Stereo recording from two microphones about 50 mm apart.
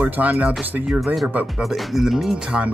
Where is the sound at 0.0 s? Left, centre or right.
Right.